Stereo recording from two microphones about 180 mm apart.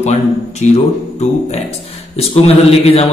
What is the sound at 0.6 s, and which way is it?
Speech, 40° left (ahead or behind).